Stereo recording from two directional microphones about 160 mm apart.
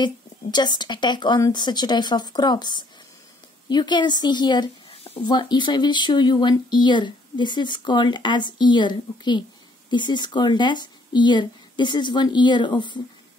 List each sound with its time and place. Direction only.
0.0 s speech: 25° left (ahead or behind)